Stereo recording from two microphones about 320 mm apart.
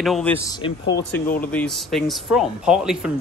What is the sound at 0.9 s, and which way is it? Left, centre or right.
Speech, left.